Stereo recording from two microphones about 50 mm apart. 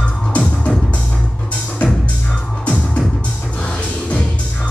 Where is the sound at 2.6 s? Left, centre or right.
Left.